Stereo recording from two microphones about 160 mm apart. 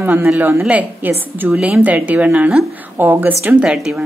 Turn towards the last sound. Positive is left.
turn(degrees=-5)  # may be behind; listen again after turning